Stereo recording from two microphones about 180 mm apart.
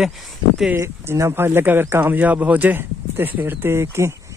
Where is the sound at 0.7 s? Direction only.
15° right (ahead or behind).